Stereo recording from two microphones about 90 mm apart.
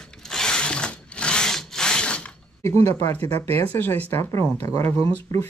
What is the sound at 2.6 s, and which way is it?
Speech, 30° left (ahead or behind).